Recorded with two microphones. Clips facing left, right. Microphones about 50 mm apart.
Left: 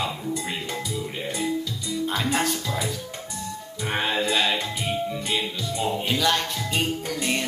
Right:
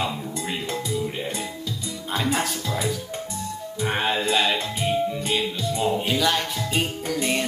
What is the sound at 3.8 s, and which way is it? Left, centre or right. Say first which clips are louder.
Music: right 1 dB; centre.